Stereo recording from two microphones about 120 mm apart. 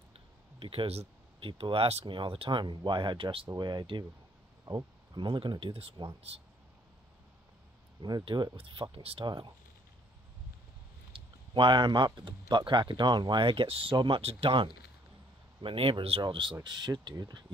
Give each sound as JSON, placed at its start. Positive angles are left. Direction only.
{"t": 0.6, "sound": "speech", "side_deg": -50}
{"t": 8.0, "sound": "speech", "side_deg": -40}
{"t": 11.1, "sound": "speech", "side_deg": -45}